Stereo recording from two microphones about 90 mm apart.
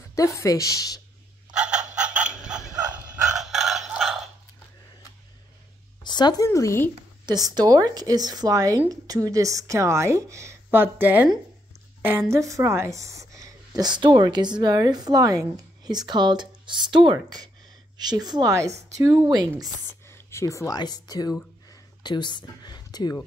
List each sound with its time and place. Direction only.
0.1 s speech: 35° left (ahead or behind)
1.5 s frog: 10° right (ahead or behind)
3.3 s crowing: 5° right (ahead or behind)
6.0 s speech: 55° left (ahead or behind)
6.4 s speech: 35° left (ahead or behind)
7.2 s a woman's voice: 50° right (ahead or behind)
18.5 s speech: 35° right (ahead or behind)
19.9 s a sound: 30° left (ahead or behind)
20.7 s speech: 50° left (ahead or behind)